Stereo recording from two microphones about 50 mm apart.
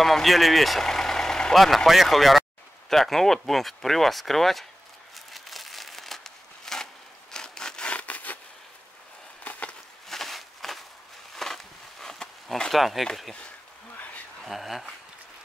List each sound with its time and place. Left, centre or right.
0.0 s speech: centre
1.5 s speech: centre
5.1 s crumpling: centre
7.3 s sawing: centre; by 8.4 s left
9.4 s a sound: left
10.0 s walk: centre
11.3 s a sound: centre
12.7 s speech: centre
14.4 s speech: centre